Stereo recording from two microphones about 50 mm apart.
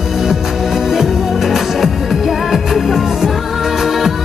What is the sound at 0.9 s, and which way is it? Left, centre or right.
Music, centre.